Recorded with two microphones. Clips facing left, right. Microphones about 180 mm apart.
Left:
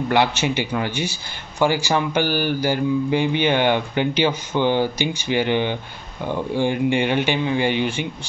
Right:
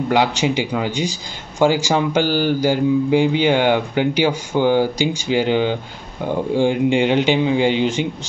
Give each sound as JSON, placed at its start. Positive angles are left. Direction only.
{"t": 0.1, "sound": "speech", "side_deg": -15}